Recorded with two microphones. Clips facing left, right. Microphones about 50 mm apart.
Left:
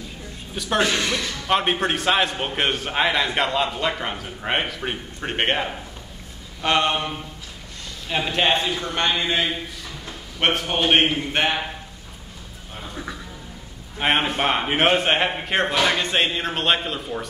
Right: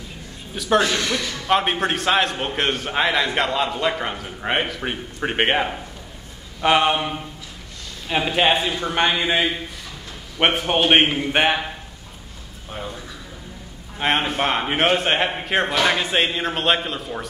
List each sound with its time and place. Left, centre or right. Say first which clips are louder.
0.6 s a man's voice: right 2 dB; centre
8.1 s speech: right 2 dB; centre
13.9 s a man's voice: even; centre